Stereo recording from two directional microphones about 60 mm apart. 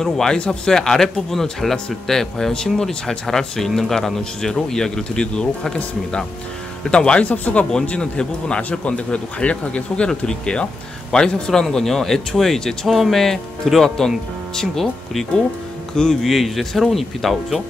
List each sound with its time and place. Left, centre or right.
0.0 s speech: centre